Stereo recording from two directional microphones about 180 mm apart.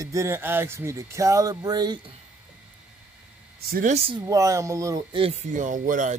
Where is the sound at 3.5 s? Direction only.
55° right (ahead or behind).